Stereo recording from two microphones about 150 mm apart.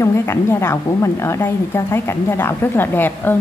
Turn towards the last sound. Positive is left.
turn(degrees=15)  # may be behind; listen again after turning